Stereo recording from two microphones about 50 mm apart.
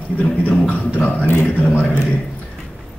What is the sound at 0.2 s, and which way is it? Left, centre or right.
Speech, left.